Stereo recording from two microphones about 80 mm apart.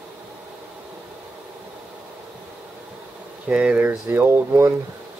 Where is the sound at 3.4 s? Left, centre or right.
Centre.